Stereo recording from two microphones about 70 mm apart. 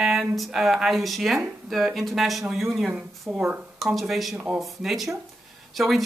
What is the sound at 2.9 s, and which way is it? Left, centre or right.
Speech, centre.